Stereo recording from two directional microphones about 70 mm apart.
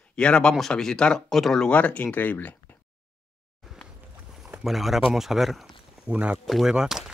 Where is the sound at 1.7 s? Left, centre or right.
Centre.